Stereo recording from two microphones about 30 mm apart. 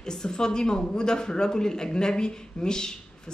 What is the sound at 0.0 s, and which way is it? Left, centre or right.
Speech, left.